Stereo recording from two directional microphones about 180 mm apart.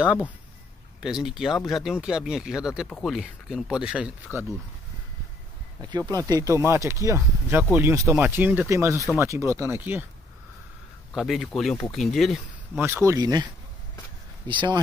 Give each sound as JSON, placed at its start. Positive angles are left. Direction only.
{"t": 0.0, "sound": "speech", "side_deg": -5}
{"t": 5.8, "sound": "speech", "side_deg": -20}
{"t": 11.1, "sound": "speech", "side_deg": 0}
{"t": 12.8, "sound": "speech", "side_deg": -15}
{"t": 14.5, "sound": "speech", "side_deg": -25}